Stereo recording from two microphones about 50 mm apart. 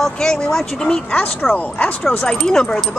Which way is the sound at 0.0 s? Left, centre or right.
Centre.